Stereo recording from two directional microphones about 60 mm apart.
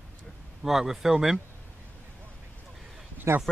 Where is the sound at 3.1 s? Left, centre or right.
Right.